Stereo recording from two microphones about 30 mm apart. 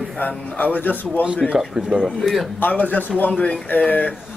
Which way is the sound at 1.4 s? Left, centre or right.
Centre.